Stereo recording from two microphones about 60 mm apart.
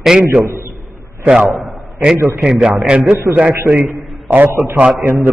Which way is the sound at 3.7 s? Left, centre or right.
Right.